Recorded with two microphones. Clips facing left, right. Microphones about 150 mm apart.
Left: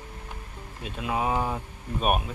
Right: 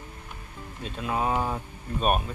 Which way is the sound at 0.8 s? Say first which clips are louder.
Even; 5° left (ahead or behind).